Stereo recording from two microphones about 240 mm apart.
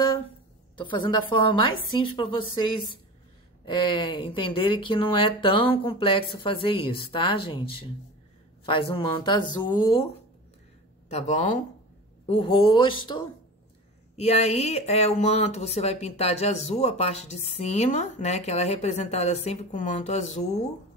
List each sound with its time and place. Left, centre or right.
0.7 s speech: centre
8.6 s speech: left
11.1 s speech: left